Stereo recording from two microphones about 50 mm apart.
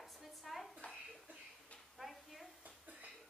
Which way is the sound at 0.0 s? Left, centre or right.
Centre.